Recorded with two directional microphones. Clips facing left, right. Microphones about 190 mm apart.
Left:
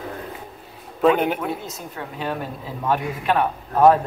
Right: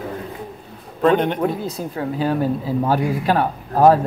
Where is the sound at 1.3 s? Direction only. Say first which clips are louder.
Right 6 dB; 35° right (ahead or behind).